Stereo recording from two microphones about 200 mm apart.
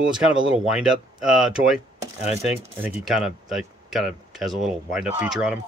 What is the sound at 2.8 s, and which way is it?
Speech, 5° right (ahead or behind).